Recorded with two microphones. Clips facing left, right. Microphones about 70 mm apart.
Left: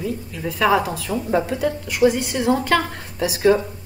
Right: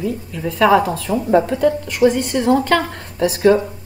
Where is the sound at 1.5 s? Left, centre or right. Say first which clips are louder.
Right 6 dB; centre.